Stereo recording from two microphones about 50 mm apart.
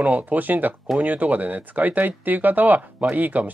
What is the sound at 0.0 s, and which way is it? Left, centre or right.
Speech, right.